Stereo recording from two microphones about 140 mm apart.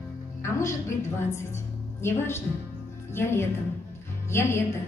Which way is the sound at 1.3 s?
20° left (ahead or behind).